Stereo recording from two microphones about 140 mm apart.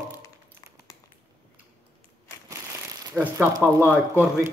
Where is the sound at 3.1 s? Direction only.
20° right (ahead or behind).